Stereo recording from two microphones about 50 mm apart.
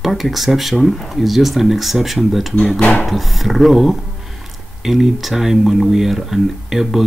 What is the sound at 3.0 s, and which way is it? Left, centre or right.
Speech, centre.